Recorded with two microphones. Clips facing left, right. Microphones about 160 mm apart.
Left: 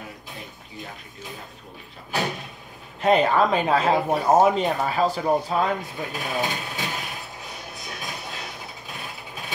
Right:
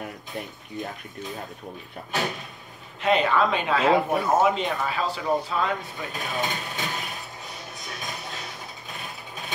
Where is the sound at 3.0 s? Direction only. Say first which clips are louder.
Left 3 dB; 40° left (ahead or behind).